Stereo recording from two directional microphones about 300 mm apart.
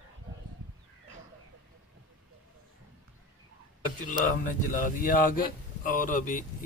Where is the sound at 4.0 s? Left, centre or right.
Left.